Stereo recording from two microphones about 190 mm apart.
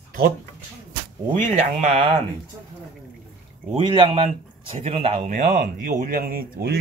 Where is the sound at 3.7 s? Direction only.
30° right (ahead or behind); by 6.8 s 55° right (ahead or behind).